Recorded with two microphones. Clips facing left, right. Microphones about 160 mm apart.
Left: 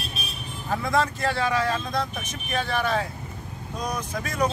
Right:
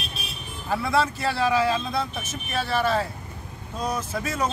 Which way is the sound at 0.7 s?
5° right (ahead or behind).